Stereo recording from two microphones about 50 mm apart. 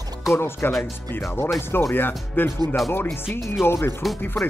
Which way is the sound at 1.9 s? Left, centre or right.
Left.